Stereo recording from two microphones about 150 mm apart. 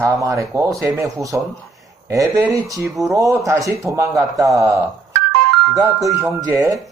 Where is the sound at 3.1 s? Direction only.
20° right (ahead or behind).